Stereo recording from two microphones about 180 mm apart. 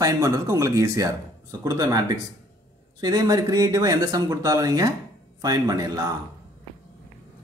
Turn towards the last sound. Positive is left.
turn(degrees=-20)  # may be behind; listen again after turning